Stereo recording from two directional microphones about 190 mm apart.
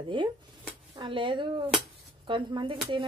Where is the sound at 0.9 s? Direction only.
25° right (ahead or behind).